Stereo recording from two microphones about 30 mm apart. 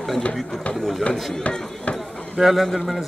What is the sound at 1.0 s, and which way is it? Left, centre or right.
Speech, left.